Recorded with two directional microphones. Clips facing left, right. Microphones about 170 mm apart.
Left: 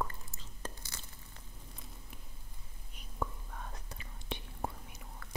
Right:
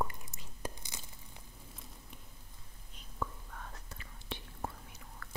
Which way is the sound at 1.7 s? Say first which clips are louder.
Left 1 dB; centre (ahead or behind).